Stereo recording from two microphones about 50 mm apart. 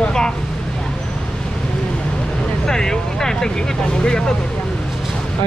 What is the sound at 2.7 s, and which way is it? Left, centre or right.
Speech, centre.